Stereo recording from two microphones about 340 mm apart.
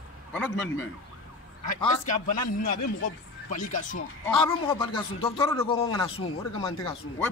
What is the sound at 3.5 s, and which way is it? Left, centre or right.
Speech, left.